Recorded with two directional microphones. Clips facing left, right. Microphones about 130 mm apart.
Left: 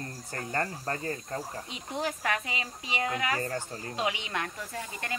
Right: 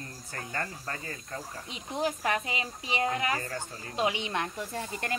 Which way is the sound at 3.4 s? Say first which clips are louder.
Left 4 dB; 35° left (ahead or behind).